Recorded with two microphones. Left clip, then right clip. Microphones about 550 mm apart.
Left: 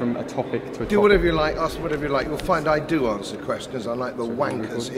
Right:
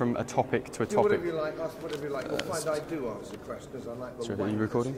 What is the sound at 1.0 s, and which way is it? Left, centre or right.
Speech, centre.